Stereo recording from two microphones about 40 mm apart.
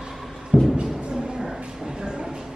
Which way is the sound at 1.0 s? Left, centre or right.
Right.